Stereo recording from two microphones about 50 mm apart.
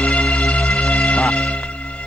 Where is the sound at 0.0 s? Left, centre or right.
Left.